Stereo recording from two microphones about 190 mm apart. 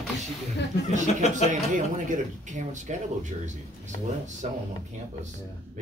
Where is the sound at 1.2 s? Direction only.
35° left (ahead or behind).